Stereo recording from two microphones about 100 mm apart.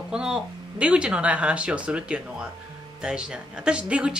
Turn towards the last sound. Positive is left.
turn(degrees=-10)  # may be behind; listen again after turning